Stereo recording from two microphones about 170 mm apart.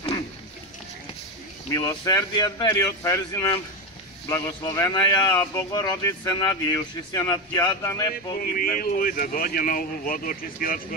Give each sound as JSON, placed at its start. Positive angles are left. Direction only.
{"t": 1.7, "sound": "speech", "side_deg": 20}
{"t": 8.4, "sound": "speech", "side_deg": 55}